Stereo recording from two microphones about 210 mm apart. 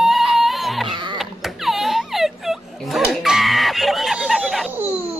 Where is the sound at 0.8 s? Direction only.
20° right (ahead or behind).